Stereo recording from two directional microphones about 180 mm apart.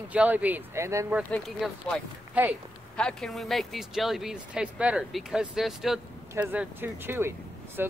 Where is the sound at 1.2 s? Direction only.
10° left (ahead or behind).